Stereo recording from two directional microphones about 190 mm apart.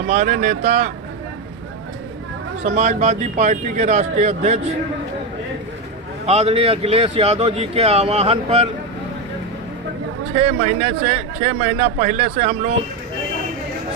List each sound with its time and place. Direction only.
0.1 s a man's voice: 45° right (ahead or behind)
2.6 s a man's voice: 40° right (ahead or behind)
6.2 s a man's voice: 35° right (ahead or behind)
10.3 s a man's voice: 35° right (ahead or behind)